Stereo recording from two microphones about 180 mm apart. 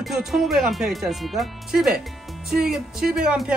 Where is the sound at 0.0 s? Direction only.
Centre (ahead or behind).